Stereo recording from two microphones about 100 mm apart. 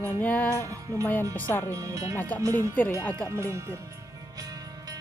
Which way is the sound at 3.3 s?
25° right (ahead or behind).